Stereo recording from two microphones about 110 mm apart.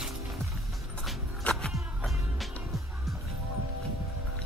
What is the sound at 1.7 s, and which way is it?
Music, centre (ahead or behind).